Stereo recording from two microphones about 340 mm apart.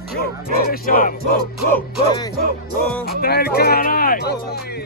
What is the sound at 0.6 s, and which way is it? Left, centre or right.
Speech, left.